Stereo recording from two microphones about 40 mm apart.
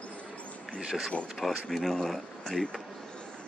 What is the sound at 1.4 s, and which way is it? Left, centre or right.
Speech, centre.